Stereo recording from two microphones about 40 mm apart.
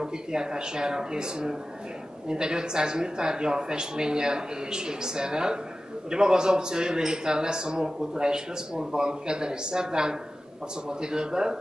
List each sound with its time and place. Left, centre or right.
0.0 s a man's voice: centre